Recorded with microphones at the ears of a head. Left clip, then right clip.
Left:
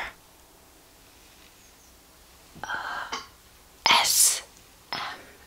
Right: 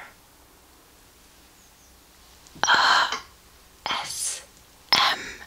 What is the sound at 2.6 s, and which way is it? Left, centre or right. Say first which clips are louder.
Gasp: right 14 dB; right.